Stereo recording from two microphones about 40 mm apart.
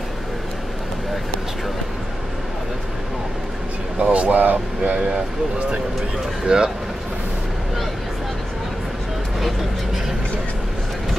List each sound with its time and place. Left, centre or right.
4.0 s speech: right
4.4 s speech: right
4.9 s speech: right
6.4 s speech: right